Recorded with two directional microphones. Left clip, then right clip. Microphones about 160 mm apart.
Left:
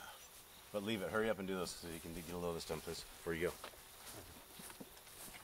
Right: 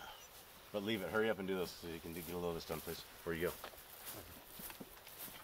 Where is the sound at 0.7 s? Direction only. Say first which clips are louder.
Right 1 dB; 10° left (ahead or behind).